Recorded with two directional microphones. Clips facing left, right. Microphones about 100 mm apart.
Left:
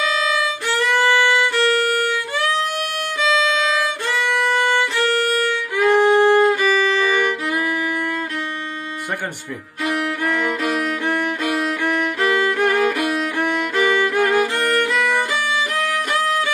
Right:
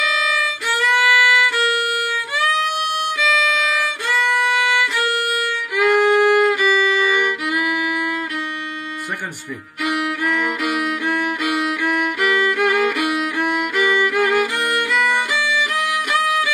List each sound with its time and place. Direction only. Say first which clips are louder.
0.0 s violin: left 1 dB; 35° left (ahead or behind)
3.2 s music: left 3 dB; 30° left (ahead or behind)
4.1 s violin: right 2 dB; 35° left (ahead or behind)
9.8 s violin: even; 35° left (ahead or behind)